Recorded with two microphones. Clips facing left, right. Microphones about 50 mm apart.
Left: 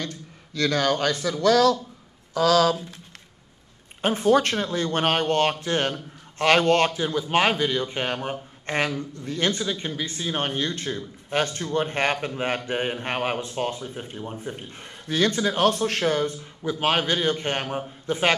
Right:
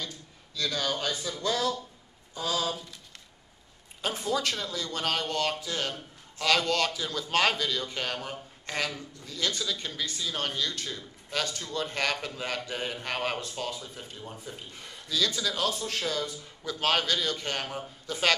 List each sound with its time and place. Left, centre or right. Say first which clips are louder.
0.0 s speech: left 6 dB; left
4.0 s speech: left 10 dB; left
7.1 s a man's voice: left 5 dB; left
13.6 s a man's voice: left 7 dB; left
16.6 s a man's voice: left 4 dB; left